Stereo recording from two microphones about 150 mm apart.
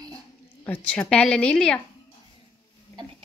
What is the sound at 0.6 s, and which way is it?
A woman's voice, 10° left (ahead or behind).